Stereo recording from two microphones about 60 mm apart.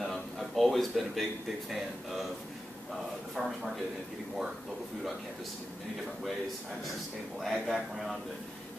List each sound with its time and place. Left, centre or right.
0.0 s a sound: centre
1.7 s a man's voice: centre
3.3 s a man's voice: centre
7.3 s a man's voice: centre